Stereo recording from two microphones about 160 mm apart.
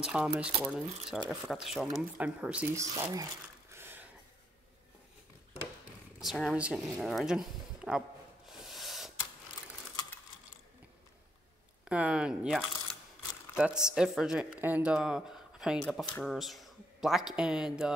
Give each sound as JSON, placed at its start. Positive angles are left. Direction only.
{"t": 0.0, "sound": "speech", "side_deg": -5}
{"t": 2.7, "sound": "speech", "side_deg": -20}
{"t": 3.7, "sound": "a sound", "side_deg": -15}
{"t": 6.5, "sound": "speech", "side_deg": -5}
{"t": 8.5, "sound": "a sound", "side_deg": 0}
{"t": 11.8, "sound": "speech", "side_deg": -5}
{"t": 16.3, "sound": "speech", "side_deg": 0}